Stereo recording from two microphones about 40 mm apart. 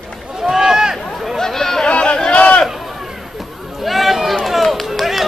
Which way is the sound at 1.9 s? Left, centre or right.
Left.